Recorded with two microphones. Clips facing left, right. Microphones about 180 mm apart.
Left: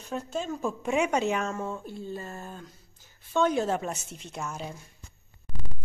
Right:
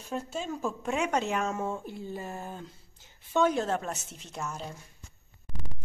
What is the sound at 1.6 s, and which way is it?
Speech, 15° right (ahead or behind).